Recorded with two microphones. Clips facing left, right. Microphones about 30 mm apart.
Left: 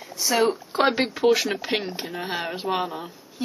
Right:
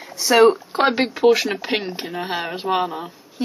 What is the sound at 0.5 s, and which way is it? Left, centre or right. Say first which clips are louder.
Speech: right 4 dB; centre.